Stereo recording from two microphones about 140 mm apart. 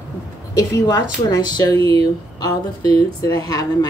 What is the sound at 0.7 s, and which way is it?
Speech, 25° left (ahead or behind).